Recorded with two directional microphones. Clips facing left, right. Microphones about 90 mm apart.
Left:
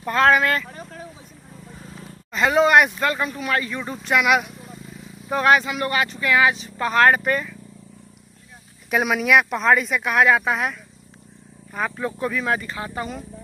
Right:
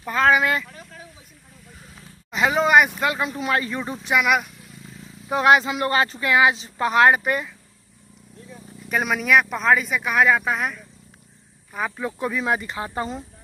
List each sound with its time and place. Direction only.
0.0 s speech: 5° right (ahead or behind)
0.7 s vehicle: 40° left (ahead or behind)
2.3 s speech: 5° right (ahead or behind)
3.0 s speech: 15° right (ahead or behind)
4.1 s speech: centre (ahead or behind)
5.3 s speech: 20° right (ahead or behind)
8.9 s speech: 5° left (ahead or behind)
12.2 s speech: 20° right (ahead or behind)